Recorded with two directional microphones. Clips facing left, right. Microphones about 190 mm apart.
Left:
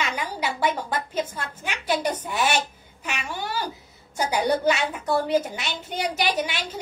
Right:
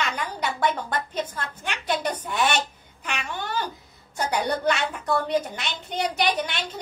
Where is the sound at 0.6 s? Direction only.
10° left (ahead or behind).